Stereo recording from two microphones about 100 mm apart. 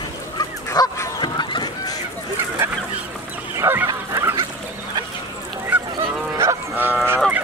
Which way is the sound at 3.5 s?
20° right (ahead or behind).